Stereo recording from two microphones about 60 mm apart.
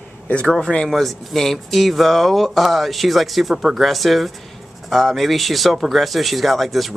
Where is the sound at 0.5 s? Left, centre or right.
Centre.